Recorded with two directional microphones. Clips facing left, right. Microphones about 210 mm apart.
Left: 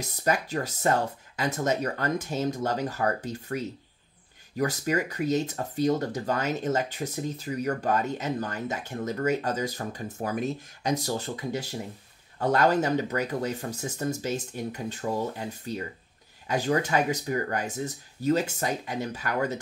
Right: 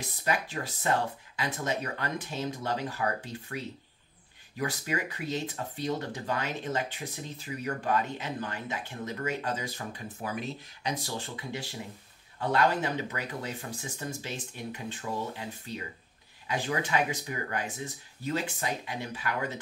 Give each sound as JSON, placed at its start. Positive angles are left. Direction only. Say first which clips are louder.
{"t": 0.0, "sound": "speech", "louder": "left 4 dB", "side_deg": 40}